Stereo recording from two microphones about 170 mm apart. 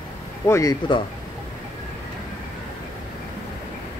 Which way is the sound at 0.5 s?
20° left (ahead or behind).